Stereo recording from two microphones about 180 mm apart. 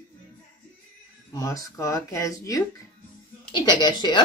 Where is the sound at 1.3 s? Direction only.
20° left (ahead or behind).